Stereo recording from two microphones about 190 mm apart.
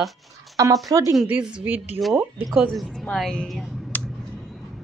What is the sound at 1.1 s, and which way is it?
A woman's voice, 5° right (ahead or behind).